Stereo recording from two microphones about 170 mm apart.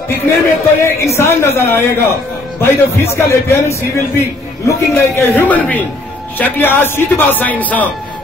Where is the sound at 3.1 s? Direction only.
15° left (ahead or behind).